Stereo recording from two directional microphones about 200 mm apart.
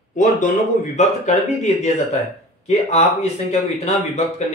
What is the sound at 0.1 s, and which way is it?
A man's voice, 40° left (ahead or behind).